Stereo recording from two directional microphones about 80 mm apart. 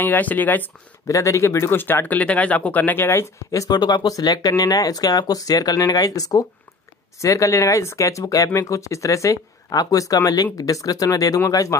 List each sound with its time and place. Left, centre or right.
0.0 s speech: left
1.0 s speech: left
3.7 s speech: left